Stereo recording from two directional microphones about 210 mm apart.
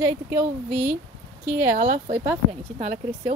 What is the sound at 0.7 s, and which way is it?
Speech, 35° right (ahead or behind).